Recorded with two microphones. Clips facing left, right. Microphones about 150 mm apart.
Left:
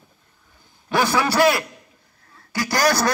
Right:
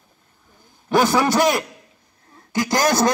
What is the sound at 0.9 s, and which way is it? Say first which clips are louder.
A man's voice: right 3 dB; 15° right (ahead or behind).